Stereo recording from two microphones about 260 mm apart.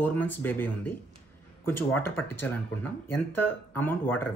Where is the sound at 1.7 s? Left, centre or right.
Left.